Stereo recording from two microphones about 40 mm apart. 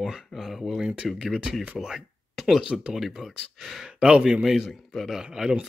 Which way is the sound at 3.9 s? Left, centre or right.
Right.